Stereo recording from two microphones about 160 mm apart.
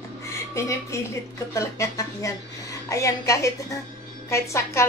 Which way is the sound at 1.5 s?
20° left (ahead or behind).